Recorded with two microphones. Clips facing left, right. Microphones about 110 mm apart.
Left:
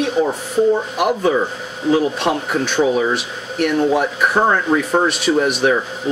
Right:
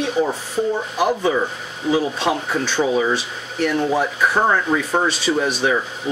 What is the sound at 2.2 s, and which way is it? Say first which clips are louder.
Speech: left 2 dB; 10° left (ahead or behind).